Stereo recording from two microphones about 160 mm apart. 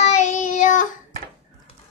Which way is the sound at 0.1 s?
50° left (ahead or behind).